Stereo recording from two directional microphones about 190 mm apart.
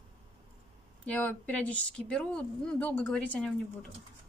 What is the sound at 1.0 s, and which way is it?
A woman's voice, 10° left (ahead or behind).